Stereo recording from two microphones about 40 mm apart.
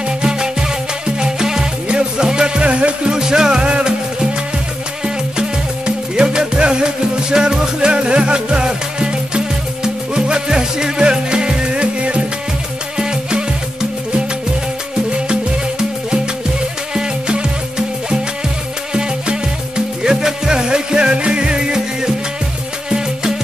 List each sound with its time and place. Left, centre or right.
0.2 s music: right
3.1 s music: centre
5.9 s music: right
12.9 s music: centre
16.9 s music: right
20.0 s music: centre